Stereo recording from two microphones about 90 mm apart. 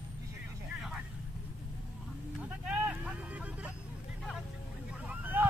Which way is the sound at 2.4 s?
15° right (ahead or behind).